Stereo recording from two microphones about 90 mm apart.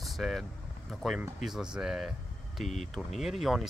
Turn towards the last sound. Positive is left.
turn(degrees=0)  # may be behind; listen again after turning